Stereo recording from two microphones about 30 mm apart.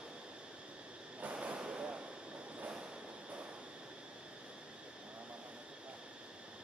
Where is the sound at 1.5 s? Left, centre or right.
Right.